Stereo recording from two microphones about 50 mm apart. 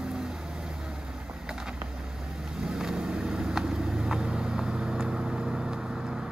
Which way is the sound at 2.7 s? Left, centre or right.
Centre.